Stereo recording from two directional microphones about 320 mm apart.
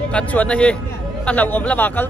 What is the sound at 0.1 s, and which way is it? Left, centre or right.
Speech, centre.